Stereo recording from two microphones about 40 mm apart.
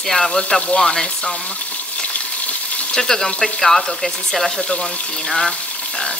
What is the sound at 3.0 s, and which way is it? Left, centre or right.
Speech, centre.